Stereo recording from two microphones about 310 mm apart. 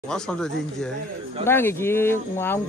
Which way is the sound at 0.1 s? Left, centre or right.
Centre.